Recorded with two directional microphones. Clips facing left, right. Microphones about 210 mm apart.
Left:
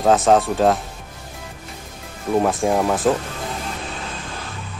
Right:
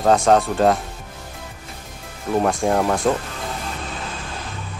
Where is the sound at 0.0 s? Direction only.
5° left (ahead or behind).